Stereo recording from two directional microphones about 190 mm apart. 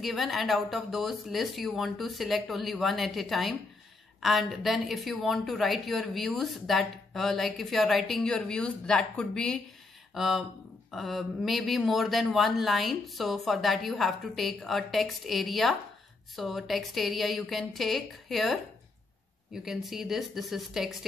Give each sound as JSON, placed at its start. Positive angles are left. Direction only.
{"t": 0.0, "sound": "a woman's voice", "side_deg": 0}